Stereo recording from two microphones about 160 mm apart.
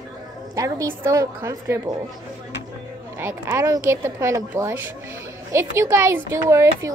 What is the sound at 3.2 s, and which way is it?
A woman's voice, 15° right (ahead or behind).